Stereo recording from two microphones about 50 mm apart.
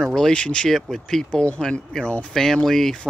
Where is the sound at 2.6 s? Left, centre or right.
Centre.